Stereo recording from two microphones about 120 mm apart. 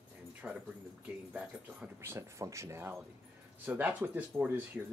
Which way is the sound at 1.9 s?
25° right (ahead or behind).